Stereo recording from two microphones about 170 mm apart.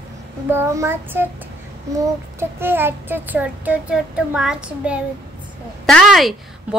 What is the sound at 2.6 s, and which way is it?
Child singing, 10° right (ahead or behind).